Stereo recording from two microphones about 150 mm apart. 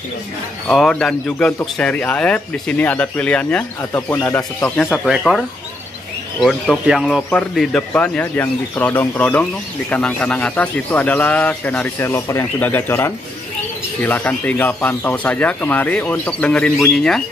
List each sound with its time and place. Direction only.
0.7 s speech: 5° left (ahead or behind)
5.0 s speech: centre (ahead or behind)
6.4 s speech: 5° left (ahead or behind)